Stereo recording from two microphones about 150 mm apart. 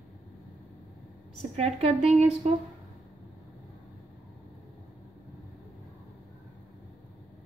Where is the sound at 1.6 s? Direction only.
45° right (ahead or behind).